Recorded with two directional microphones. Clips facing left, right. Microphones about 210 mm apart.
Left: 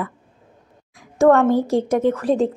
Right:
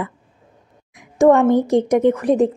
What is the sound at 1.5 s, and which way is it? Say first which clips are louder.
A woman's voice: right 3 dB; 20° right (ahead or behind).